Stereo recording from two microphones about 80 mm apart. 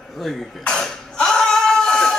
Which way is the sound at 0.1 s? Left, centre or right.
Centre.